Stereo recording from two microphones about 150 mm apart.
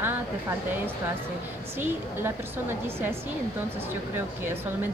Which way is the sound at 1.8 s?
15° right (ahead or behind).